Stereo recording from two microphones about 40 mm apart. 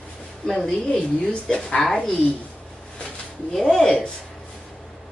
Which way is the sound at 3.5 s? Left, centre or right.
Centre.